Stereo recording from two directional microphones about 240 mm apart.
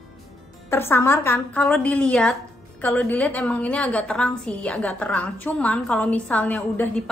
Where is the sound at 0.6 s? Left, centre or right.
Centre.